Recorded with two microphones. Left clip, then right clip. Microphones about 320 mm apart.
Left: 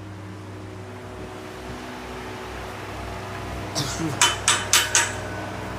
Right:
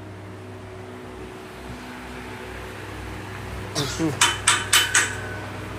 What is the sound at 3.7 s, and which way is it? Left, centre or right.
Tick-tock, left.